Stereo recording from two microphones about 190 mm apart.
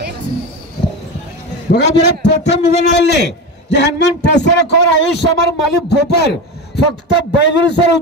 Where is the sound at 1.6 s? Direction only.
65° left (ahead or behind).